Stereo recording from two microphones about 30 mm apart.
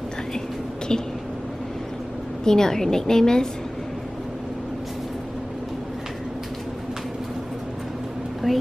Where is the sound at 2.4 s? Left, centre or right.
Centre.